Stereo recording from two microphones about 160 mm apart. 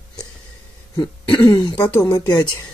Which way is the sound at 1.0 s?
25° left (ahead or behind).